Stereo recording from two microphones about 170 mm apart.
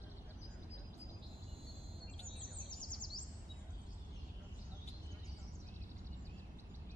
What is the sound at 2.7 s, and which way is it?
Bird, 25° left (ahead or behind).